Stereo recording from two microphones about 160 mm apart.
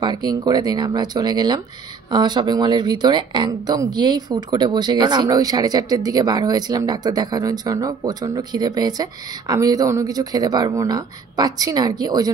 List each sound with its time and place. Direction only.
0.0 s speech: 25° right (ahead or behind)